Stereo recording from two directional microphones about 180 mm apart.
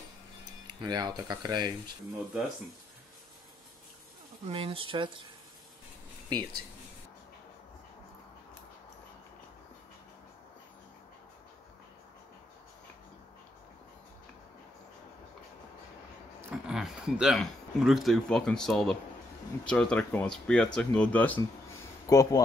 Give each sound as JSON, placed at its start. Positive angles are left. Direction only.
{"t": 0.7, "sound": "speech", "side_deg": -25}
{"t": 4.5, "sound": "speech", "side_deg": -30}
{"t": 16.3, "sound": "speech", "side_deg": -5}